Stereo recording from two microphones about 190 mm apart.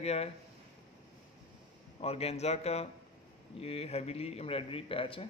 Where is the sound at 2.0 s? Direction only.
30° left (ahead or behind).